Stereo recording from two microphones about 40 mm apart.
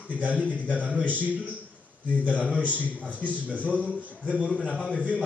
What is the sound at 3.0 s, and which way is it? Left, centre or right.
Speech, left.